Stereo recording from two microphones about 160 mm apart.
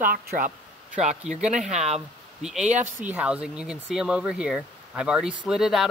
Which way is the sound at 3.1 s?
10° right (ahead or behind).